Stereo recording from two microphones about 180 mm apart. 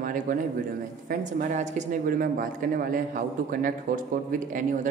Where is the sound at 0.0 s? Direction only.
50° right (ahead or behind).